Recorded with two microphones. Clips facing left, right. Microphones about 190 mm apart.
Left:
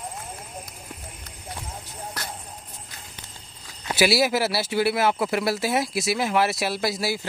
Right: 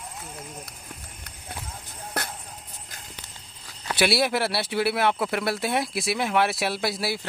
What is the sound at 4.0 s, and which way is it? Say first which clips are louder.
Speech: left 2 dB; 5° left (ahead or behind).